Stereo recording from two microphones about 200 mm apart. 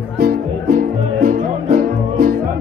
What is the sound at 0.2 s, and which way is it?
Music, 50° right (ahead or behind).